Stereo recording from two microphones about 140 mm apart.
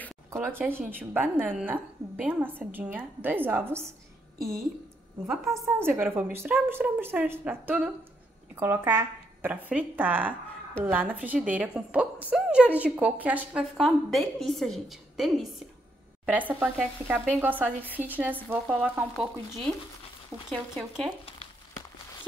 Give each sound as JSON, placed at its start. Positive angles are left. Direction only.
{"t": 0.3, "sound": "a woman's voice", "side_deg": -15}
{"t": 5.3, "sound": "speech", "side_deg": 0}
{"t": 5.8, "sound": "a woman's voice", "side_deg": -15}
{"t": 16.3, "sound": "a woman's voice", "side_deg": -10}
{"t": 20.4, "sound": "speech", "side_deg": -5}